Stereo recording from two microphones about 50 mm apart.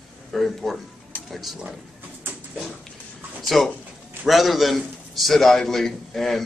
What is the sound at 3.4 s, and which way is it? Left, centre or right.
A man's voice, centre.